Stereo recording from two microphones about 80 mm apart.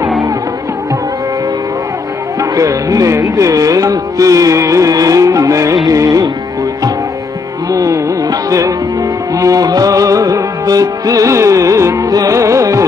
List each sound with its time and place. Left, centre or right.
2.5 s carnatic music: right
5.9 s music: right
7.7 s music: right